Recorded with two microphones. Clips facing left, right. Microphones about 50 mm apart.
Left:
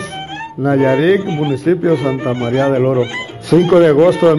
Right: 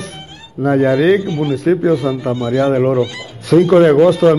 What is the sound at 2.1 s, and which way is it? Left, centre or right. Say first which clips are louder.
Speech: left 1 dB; left.